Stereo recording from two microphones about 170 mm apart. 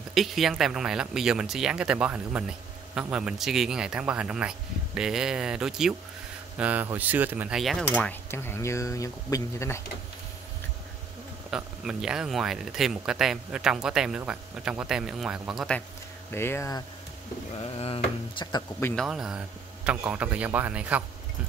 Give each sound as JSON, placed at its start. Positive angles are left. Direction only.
{"t": 0.1, "sound": "speech", "side_deg": 0}
{"t": 11.5, "sound": "speech", "side_deg": -5}
{"t": 16.3, "sound": "speech", "side_deg": 15}
{"t": 17.7, "sound": "speech", "side_deg": 35}
{"t": 18.9, "sound": "speech", "side_deg": -5}